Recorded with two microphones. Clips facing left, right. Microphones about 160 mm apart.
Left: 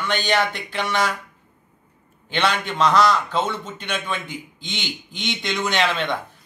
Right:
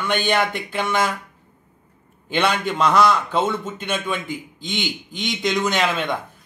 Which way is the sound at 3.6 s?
50° right (ahead or behind).